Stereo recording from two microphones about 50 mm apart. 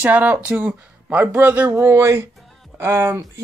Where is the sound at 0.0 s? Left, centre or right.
Right.